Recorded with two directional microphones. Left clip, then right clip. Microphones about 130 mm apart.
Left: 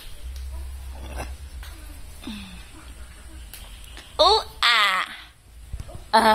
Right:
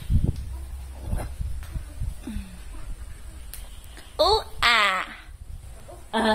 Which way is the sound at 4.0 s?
20° right (ahead or behind).